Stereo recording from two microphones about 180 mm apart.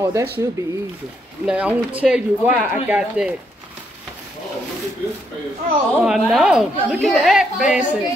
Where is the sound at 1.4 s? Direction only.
5° right (ahead or behind).